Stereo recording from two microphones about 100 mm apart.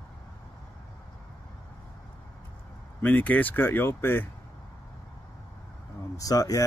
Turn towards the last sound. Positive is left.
turn(degrees=35)  # may be behind; listen again after turning